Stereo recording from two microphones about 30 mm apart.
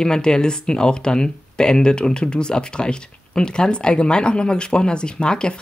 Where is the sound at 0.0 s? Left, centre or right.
Left.